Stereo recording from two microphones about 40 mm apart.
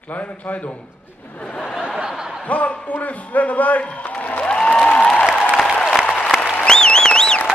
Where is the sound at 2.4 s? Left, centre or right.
Left.